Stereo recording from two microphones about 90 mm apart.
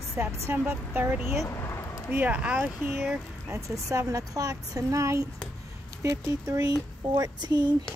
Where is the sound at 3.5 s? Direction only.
35° right (ahead or behind); by 7.7 s 50° right (ahead or behind).